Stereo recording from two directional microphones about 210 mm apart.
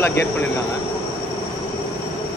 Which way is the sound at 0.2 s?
10° left (ahead or behind).